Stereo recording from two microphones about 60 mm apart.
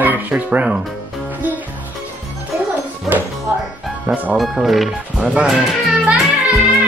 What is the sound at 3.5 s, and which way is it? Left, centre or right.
Music, right.